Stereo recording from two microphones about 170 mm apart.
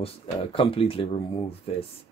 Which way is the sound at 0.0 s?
30° left (ahead or behind).